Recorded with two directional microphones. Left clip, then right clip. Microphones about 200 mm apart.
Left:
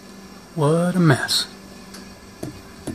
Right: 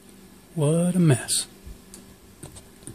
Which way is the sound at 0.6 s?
30° right (ahead or behind).